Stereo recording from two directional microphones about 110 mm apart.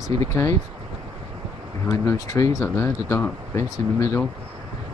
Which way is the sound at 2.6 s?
20° left (ahead or behind).